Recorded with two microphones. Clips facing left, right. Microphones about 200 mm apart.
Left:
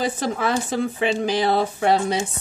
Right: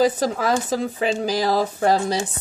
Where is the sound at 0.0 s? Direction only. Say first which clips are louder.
Right 4 dB; 40° right (ahead or behind).